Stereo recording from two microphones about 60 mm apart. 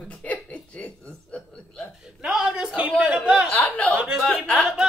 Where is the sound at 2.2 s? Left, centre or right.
Centre.